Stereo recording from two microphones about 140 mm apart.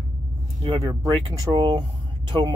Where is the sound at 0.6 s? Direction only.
35° right (ahead or behind).